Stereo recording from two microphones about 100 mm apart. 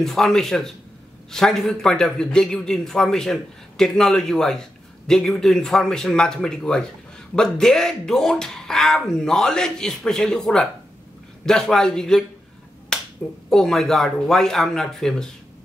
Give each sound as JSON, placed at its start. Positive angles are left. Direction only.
{"t": 0.0, "sound": "a man's voice", "side_deg": 5}
{"t": 13.5, "sound": "a man's voice", "side_deg": 5}